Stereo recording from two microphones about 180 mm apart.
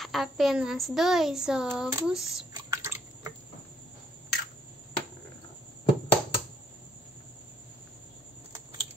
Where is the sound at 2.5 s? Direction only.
15° right (ahead or behind).